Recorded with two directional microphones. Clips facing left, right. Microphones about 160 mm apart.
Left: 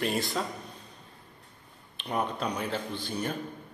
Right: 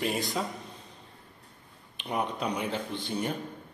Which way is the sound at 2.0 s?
10° right (ahead or behind).